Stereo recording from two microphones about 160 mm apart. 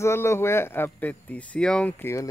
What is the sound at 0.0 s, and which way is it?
Speech, 15° left (ahead or behind).